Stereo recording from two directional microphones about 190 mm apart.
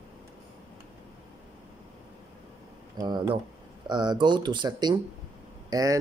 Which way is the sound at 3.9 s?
20° right (ahead or behind).